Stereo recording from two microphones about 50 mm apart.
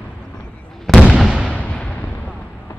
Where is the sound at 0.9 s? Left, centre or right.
Centre.